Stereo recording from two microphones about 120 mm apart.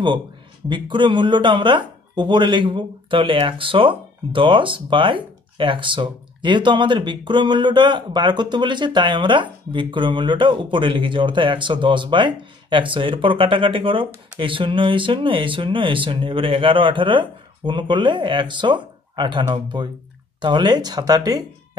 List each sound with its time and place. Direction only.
0.7 s speech: 40° right (ahead or behind)